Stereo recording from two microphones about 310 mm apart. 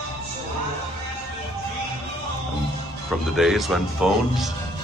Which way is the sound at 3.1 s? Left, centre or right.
Centre.